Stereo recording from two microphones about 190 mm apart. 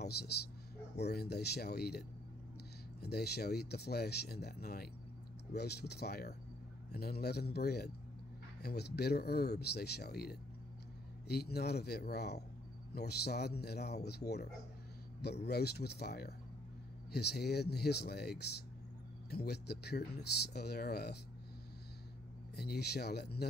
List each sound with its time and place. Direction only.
0.0 s a man's voice: 60° left (ahead or behind)
3.0 s speech: 60° left (ahead or behind)
22.6 s speech: 60° left (ahead or behind)